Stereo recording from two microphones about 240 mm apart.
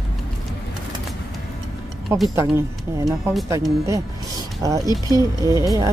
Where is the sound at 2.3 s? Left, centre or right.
Centre.